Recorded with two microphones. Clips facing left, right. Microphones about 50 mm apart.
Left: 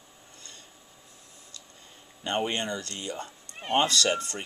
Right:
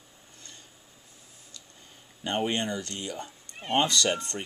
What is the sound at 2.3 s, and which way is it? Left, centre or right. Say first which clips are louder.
Speech: even; centre.